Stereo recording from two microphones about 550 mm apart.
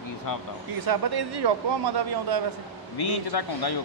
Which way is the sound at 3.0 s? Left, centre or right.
Left.